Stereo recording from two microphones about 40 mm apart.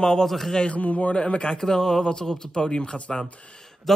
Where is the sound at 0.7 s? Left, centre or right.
Left.